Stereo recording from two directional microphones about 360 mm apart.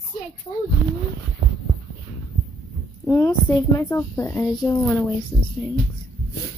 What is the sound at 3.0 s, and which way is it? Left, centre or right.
A woman's voice, centre.